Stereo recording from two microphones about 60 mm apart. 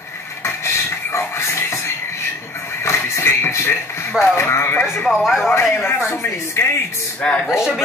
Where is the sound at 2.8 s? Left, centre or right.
Left.